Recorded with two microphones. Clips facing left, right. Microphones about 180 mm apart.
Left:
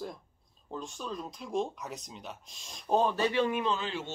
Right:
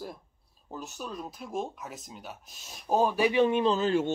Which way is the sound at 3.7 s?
45° right (ahead or behind).